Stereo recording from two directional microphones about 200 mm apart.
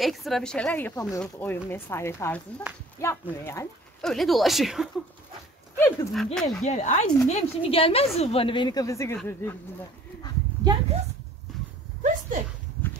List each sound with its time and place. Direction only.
0.0 s a woman's voice: centre (ahead or behind)
4.0 s a woman's voice: centre (ahead or behind)
6.6 s a woman's voice: 35° left (ahead or behind); by 9.6 s 10° left (ahead or behind)
10.6 s speech: 25° right (ahead or behind)
12.0 s a sound: 40° right (ahead or behind)